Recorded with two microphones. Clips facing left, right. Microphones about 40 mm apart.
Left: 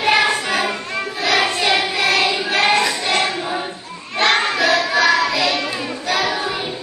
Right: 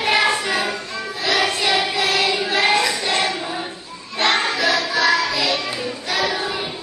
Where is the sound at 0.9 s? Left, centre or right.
Left.